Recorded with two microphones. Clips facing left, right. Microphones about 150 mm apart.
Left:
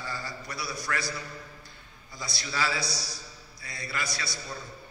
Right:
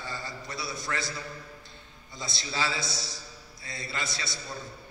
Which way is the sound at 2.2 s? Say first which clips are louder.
Left 1 dB; 25° right (ahead or behind).